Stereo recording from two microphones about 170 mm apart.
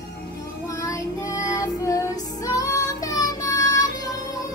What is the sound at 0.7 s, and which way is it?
Child singing, 20° left (ahead or behind).